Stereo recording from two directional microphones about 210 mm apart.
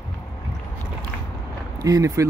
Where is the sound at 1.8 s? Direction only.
15° right (ahead or behind).